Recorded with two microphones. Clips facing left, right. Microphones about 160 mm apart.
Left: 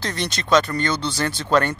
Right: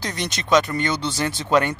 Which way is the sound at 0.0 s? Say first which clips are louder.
Left 1 dB; 15° right (ahead or behind).